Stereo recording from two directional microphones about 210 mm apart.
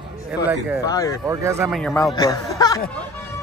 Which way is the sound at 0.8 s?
15° left (ahead or behind).